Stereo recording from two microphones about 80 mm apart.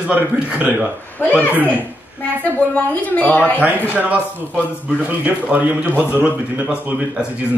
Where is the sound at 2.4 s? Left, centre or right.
Centre.